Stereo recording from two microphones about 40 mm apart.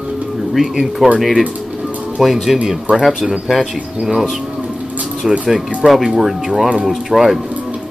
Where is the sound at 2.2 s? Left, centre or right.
Centre.